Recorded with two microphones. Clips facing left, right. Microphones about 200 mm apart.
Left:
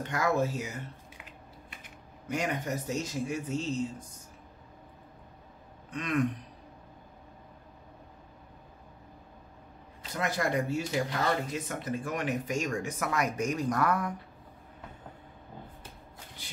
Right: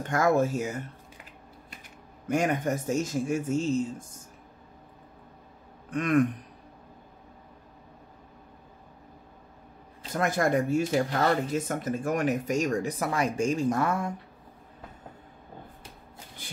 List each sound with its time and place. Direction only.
0.0 s speech: 50° right (ahead or behind)
2.2 s speech: 50° right (ahead or behind)
5.9 s a sound: 50° right (ahead or behind)
10.1 s speech: 50° right (ahead or behind); by 14.1 s 25° right (ahead or behind)